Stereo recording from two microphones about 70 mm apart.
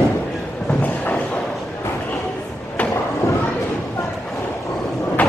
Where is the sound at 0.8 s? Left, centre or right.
Left.